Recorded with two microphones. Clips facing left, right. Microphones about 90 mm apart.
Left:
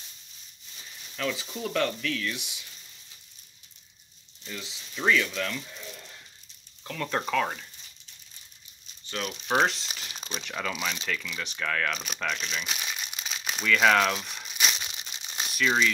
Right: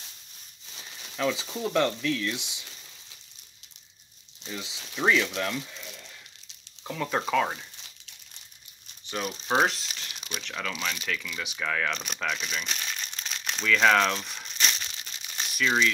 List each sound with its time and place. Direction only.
1.1 s speech: 20° right (ahead or behind)
4.5 s speech: 20° right (ahead or behind)
6.8 s speech: 10° right (ahead or behind)
9.7 s speech: centre (ahead or behind)
10.1 s crumpling: 40° left (ahead or behind)
10.4 s speech: 5° left (ahead or behind)
11.3 s speech: 5° right (ahead or behind)
14.9 s crumpling: 15° left (ahead or behind)
15.5 s speech: centre (ahead or behind)